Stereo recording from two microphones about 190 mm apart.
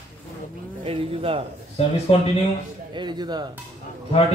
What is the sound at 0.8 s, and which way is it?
Speech, 30° right (ahead or behind).